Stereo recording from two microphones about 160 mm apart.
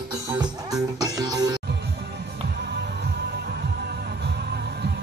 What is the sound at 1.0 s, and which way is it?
Music, 25° right (ahead or behind).